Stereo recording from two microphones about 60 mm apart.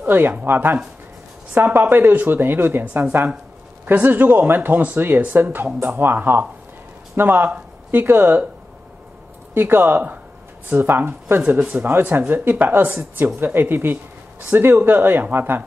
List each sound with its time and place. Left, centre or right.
0.0 s speech: right
9.5 s speech: right